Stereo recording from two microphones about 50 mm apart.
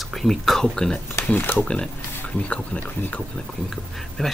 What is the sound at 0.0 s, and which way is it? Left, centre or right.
Speech, centre.